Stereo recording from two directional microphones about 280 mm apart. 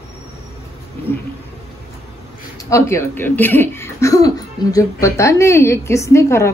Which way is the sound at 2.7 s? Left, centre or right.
Centre.